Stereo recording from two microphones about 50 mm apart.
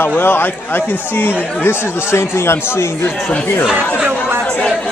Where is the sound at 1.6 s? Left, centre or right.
Left.